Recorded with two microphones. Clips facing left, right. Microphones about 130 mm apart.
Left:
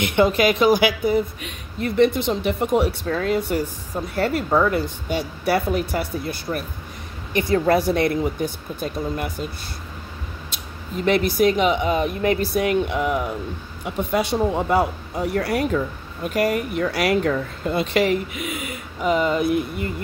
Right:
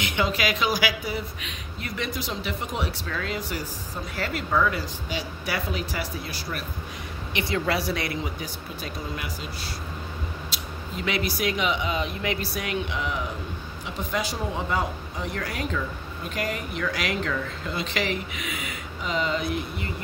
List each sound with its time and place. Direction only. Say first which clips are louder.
0.0 s speech: left 8 dB; 55° left (ahead or behind)
3.1 s speech: left 9 dB; 40° left (ahead or behind)
3.3 s speech: left 9 dB; 55° left (ahead or behind)
5.1 s speech: left 9 dB; 55° left (ahead or behind)
11.1 s speech: left 9 dB; 50° left (ahead or behind)
16.3 s speech: left 9 dB; 50° left (ahead or behind)